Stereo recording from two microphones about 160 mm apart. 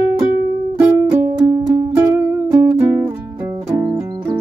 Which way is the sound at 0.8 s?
15° right (ahead or behind).